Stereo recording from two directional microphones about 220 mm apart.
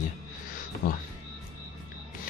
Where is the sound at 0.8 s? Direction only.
35° left (ahead or behind).